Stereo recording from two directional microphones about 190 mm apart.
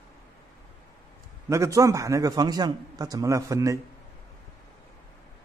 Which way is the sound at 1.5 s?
15° right (ahead or behind).